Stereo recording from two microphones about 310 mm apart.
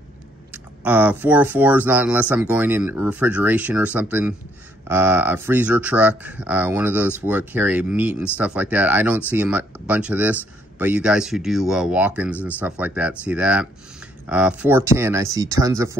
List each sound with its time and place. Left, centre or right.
0.5 s speech: centre